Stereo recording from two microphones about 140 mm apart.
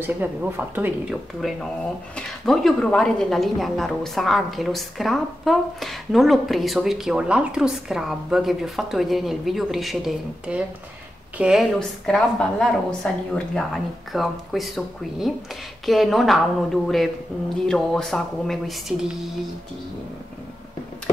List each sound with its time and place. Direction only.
0.0 s speech: 15° right (ahead or behind)
1.4 s a woman's voice: centre (ahead or behind)